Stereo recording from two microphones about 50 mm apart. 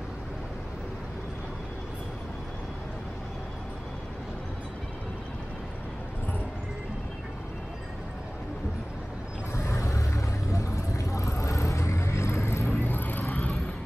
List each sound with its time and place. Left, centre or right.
9.7 s vehicle: left
12.8 s vehicle: left